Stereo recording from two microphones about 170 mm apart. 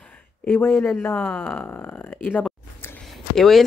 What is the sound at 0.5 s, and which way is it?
Speech, 10° left (ahead or behind).